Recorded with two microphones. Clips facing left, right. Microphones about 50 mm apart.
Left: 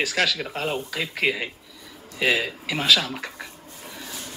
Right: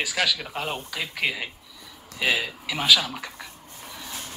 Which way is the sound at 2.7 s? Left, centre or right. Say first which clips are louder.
Even; centre.